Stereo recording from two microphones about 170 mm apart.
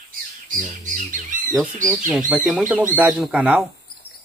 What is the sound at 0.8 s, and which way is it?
Bird, 50° right (ahead or behind).